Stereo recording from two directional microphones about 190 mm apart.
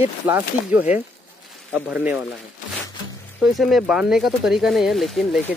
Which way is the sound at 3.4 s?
Centre (ahead or behind).